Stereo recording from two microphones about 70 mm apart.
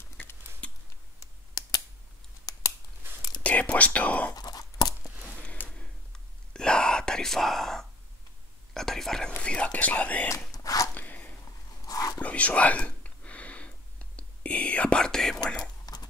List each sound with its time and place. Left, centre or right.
0.2 s a sound: left
0.6 s scissors: centre
1.6 s computer keyboard: left
3.4 s speech: centre
4.3 s tearing: left
5.3 s whispering: left
9.4 s speech: centre
10.5 s biting: left
11.0 s a sound: left
11.8 s whispering: left
12.2 s whispering: left
15.8 s a sound: left